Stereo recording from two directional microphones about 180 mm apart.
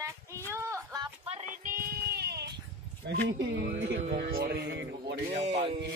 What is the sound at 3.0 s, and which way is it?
Speech, 75° right (ahead or behind).